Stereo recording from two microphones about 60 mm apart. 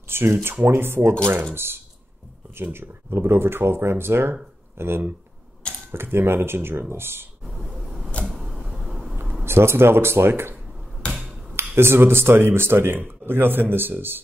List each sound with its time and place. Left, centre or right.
0.1 s speech: right
7.4 s a sound: centre
9.1 s a sound: right
9.4 s speech: right
11.0 s hammer: centre
11.5 s speech: right